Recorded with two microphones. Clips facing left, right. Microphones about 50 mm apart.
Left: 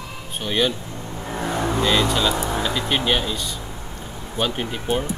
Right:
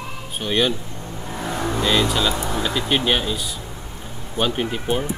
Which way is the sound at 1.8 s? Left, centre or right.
Centre.